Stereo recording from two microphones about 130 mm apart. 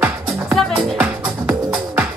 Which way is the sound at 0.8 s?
10° right (ahead or behind).